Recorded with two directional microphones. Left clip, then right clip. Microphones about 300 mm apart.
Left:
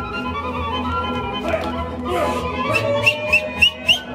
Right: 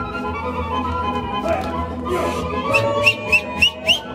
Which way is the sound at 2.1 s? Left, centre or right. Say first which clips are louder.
Left 1 dB; right.